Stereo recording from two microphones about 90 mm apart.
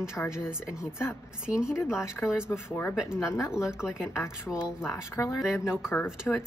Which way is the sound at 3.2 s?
35° left (ahead or behind).